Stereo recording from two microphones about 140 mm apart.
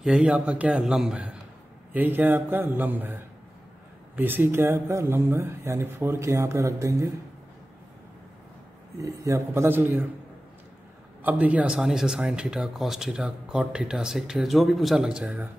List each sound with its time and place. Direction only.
0.0 s speech: 5° right (ahead or behind); by 7.1 s 20° right (ahead or behind)
9.0 s speech: 20° right (ahead or behind)
11.2 s speech: 10° right (ahead or behind)